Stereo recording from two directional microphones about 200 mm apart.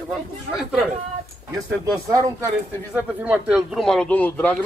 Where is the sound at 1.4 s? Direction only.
15° right (ahead or behind); by 4.6 s 10° left (ahead or behind).